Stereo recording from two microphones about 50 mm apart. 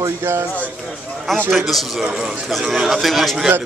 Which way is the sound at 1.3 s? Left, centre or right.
Centre.